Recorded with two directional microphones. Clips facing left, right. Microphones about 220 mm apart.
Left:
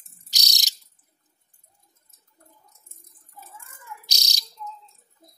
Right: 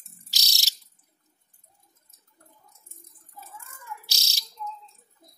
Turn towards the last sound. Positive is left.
turn(degrees=15)  # may be behind; listen again after turning